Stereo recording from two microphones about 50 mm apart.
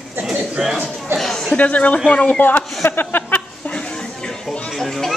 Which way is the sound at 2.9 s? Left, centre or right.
Left.